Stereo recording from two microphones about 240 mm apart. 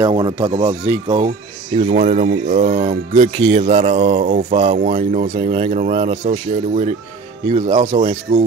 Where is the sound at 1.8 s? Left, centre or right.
Right.